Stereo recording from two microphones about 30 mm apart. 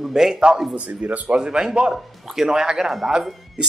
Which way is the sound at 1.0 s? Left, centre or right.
Right.